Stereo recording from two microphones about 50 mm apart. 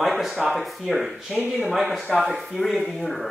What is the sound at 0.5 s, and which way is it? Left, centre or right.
A man's voice, centre.